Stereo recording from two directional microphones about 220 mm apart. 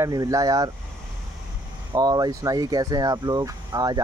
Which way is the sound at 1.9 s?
15° right (ahead or behind).